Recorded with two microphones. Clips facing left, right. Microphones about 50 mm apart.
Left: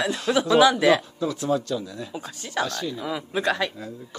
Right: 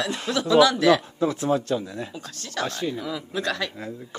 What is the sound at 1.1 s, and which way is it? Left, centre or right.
Speech, right.